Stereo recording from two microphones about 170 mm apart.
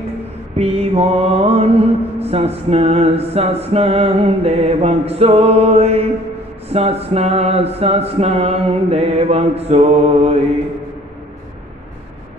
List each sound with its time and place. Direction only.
0.6 s mantra: 35° right (ahead or behind)